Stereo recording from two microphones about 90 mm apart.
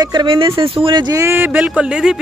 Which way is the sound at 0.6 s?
80° right.